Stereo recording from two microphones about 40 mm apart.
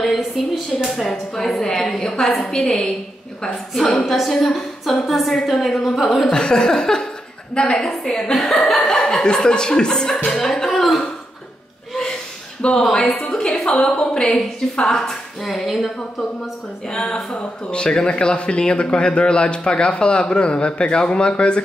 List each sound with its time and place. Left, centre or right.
0.0 s a sound: centre
0.8 s a woman's voice: centre
3.4 s a woman's voice: centre
6.3 s a woman's voice: centre
8.7 s a woman's voice: centre
10.7 s speech: centre
12.6 s speech: left
13.1 s a woman's voice: centre
13.7 s a woman's voice: left; by 15.8 s centre
15.8 s a woman's voice: centre